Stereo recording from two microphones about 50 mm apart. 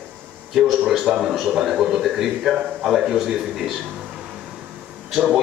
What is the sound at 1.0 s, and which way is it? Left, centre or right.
A man's voice, centre.